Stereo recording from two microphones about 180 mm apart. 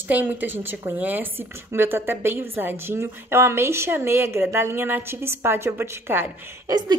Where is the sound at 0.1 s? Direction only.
10° right (ahead or behind).